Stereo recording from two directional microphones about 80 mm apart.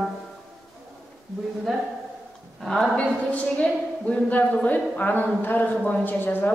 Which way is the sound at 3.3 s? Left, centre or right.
Centre.